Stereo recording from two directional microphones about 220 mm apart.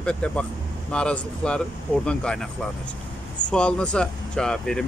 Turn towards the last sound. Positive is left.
turn(degrees=5)  # may be behind; listen again after turning